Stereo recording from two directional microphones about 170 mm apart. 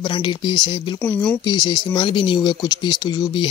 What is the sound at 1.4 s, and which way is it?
Speech, 25° left (ahead or behind).